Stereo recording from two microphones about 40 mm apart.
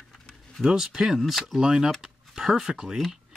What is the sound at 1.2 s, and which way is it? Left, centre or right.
Speech, centre.